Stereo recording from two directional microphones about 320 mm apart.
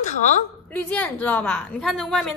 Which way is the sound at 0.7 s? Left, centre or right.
Centre.